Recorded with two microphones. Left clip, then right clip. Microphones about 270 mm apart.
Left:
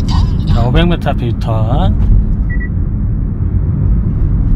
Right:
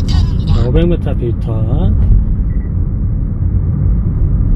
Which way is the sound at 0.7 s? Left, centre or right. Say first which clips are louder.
Even; left.